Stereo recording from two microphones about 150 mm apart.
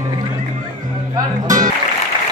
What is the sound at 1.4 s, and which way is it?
Music, 60° right (ahead or behind).